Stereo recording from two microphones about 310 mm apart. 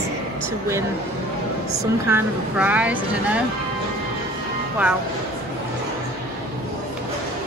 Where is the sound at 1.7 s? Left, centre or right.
Centre.